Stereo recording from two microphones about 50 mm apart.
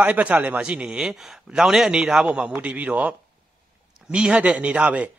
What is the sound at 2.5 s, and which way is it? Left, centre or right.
A man's voice, right.